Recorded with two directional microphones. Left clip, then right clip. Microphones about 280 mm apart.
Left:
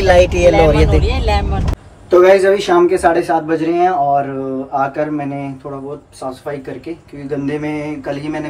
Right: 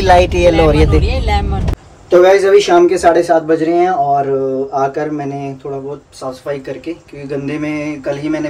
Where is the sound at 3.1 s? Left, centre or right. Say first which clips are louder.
Right 4 dB; centre.